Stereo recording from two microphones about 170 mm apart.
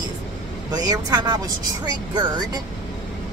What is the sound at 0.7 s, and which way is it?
A woman's voice, 25° right (ahead or behind).